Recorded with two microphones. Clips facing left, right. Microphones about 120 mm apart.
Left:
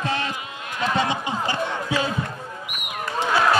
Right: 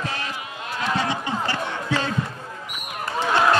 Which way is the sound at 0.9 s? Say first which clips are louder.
Left 1 dB; 20° left (ahead or behind).